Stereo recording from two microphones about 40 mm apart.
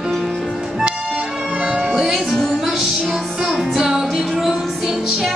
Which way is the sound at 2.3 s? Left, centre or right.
Centre.